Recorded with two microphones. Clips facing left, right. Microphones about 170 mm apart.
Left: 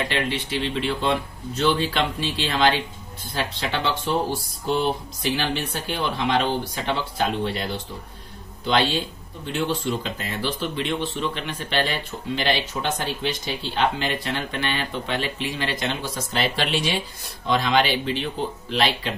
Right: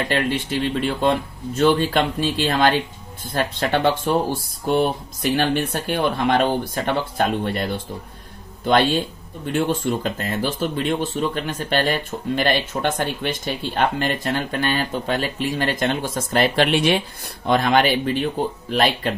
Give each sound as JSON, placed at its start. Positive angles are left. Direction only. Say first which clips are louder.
{"t": 0.1, "sound": "speech", "louder": "right 4 dB", "side_deg": -45}
{"t": 5.3, "sound": "speech", "louder": "right 6 dB", "side_deg": -50}